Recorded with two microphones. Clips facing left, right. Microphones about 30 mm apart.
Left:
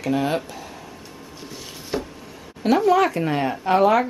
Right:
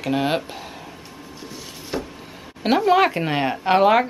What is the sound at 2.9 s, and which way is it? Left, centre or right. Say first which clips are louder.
Speech: right 1 dB; right.